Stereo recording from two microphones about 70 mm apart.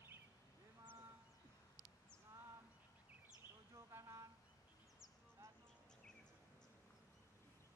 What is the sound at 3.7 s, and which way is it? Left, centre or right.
Bird, right.